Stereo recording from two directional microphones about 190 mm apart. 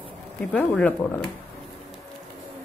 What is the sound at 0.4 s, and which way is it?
Speech, 5° left (ahead or behind).